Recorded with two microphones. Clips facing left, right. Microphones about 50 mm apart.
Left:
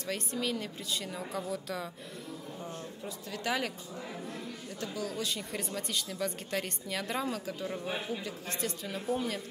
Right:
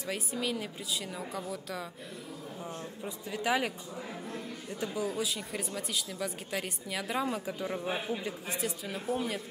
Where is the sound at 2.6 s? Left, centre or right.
Centre.